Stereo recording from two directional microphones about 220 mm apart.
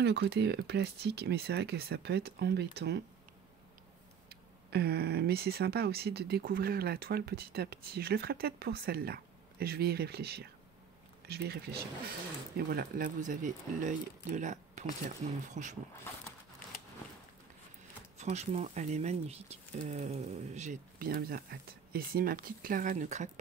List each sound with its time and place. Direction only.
0.0 s speech: 50° right (ahead or behind)
4.3 s speech: 45° right (ahead or behind)
18.1 s speech: 30° right (ahead or behind)